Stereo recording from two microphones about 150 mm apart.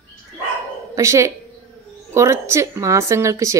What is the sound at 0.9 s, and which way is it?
A woman's voice, 20° right (ahead or behind).